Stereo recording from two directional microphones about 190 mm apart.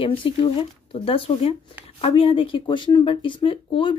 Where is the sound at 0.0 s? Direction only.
25° left (ahead or behind).